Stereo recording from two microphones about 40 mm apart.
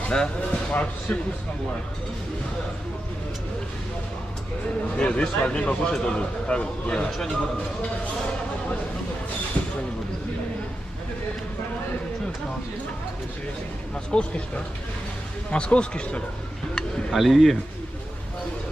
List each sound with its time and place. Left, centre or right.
0.1 s speech: centre
0.7 s speech: left
4.9 s a man's voice: left
14.1 s a man's voice: left
15.5 s a man's voice: left
17.1 s speech: centre